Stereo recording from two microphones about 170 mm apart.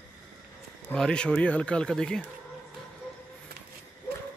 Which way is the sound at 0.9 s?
5° left (ahead or behind).